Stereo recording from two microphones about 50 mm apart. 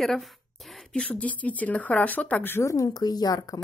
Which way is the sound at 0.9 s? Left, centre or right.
Left.